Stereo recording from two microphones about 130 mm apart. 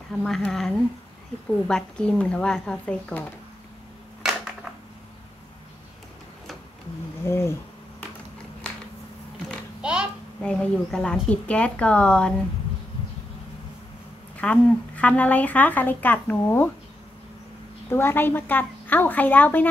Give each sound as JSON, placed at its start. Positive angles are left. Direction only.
{"t": 0.2, "sound": "a woman's voice", "side_deg": 5}
{"t": 4.2, "sound": "a sound", "side_deg": -5}
{"t": 7.2, "sound": "speech", "side_deg": 20}
{"t": 9.8, "sound": "a sound", "side_deg": -5}
{"t": 10.4, "sound": "a woman's voice", "side_deg": 5}
{"t": 14.3, "sound": "a woman's voice", "side_deg": 10}
{"t": 17.8, "sound": "a woman's voice", "side_deg": 20}